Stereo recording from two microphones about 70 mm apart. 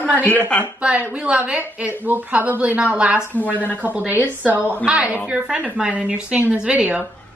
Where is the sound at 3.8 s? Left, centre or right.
Right.